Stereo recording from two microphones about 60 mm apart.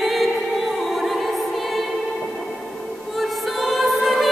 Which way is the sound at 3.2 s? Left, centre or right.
Centre.